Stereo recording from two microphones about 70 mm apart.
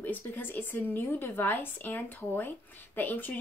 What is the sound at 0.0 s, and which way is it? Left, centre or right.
Speech, left.